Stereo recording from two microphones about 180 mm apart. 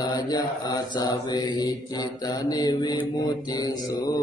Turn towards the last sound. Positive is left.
turn(degrees=20)  # may be behind; listen again after turning